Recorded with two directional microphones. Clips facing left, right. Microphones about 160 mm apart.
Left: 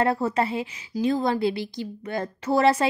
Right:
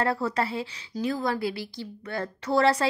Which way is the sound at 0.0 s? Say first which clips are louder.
Left 3 dB; 25° left (ahead or behind).